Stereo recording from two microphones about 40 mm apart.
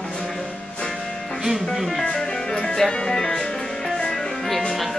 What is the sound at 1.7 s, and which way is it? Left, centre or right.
Music, centre.